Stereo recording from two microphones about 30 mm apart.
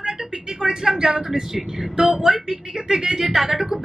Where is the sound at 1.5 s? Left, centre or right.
Centre.